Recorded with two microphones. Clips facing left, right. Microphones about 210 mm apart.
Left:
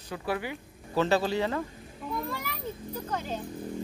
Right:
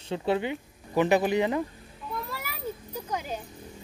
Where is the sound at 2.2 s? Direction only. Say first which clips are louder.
Left 1 dB; 5° right (ahead or behind).